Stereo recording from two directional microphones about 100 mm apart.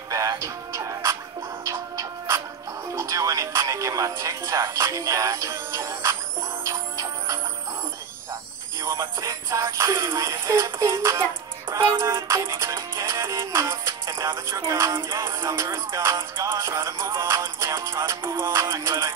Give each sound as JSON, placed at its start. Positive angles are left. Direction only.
{"t": 0.1, "sound": "music", "side_deg": -35}
{"t": 2.9, "sound": "speech", "side_deg": -35}
{"t": 6.6, "sound": "music", "side_deg": -30}
{"t": 8.8, "sound": "music", "side_deg": -30}